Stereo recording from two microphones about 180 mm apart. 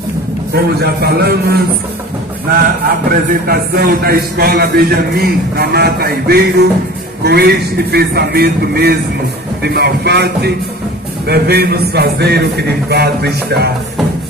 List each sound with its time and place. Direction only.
0.6 s a man's voice: 60° right (ahead or behind)
3.1 s a man's voice: 55° right (ahead or behind)